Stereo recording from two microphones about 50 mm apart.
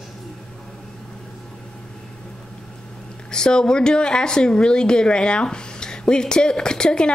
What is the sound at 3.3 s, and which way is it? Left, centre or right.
Speech, centre.